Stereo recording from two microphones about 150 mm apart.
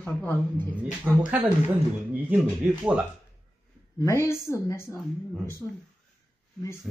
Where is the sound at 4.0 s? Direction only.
15° left (ahead or behind).